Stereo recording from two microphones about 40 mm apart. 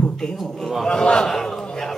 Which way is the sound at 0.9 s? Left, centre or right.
Left.